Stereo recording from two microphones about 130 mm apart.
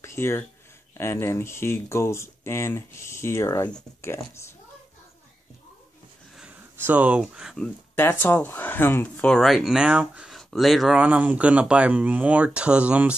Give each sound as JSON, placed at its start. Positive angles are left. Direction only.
{"t": 0.0, "sound": "a sound", "side_deg": 20}
{"t": 0.9, "sound": "speech", "side_deg": 20}
{"t": 6.8, "sound": "speech", "side_deg": -10}
{"t": 7.5, "sound": "speech", "side_deg": 5}